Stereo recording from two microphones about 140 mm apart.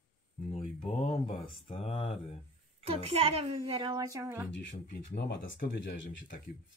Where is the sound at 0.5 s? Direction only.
45° left (ahead or behind).